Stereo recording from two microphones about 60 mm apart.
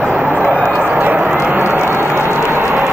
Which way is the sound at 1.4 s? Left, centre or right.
Right.